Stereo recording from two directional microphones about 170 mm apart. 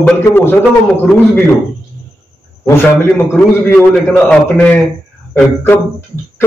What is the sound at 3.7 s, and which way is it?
A man's voice, 10° left (ahead or behind).